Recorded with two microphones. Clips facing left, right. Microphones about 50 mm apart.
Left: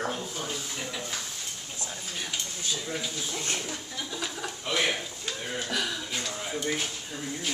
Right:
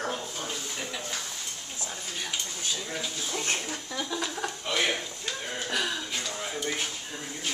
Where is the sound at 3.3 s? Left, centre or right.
Right.